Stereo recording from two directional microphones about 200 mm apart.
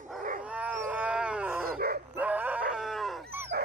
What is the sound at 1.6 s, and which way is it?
Dog, 50° right (ahead or behind).